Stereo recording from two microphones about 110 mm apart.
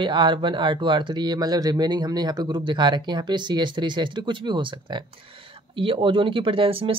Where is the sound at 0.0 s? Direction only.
45° right (ahead or behind).